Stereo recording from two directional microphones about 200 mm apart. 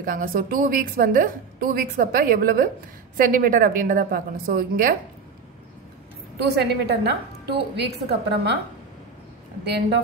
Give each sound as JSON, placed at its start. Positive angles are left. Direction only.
{"t": 0.0, "sound": "a woman's voice", "side_deg": -45}
{"t": 6.4, "sound": "a woman's voice", "side_deg": -55}